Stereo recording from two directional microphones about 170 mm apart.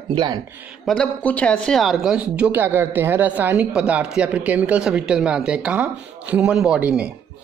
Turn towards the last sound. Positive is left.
turn(degrees=-5)  # may be behind; listen again after turning